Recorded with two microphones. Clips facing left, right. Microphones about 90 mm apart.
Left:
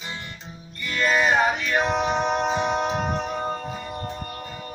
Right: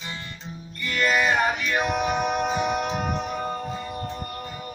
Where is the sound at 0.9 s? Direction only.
20° left (ahead or behind).